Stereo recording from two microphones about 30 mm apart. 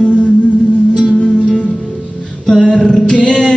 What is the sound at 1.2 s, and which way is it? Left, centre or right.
Music, centre.